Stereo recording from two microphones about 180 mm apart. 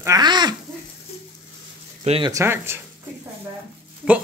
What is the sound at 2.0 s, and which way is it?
Speech, 35° right (ahead or behind).